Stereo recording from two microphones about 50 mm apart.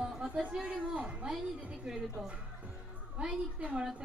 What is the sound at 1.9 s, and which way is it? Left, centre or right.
Speech, centre.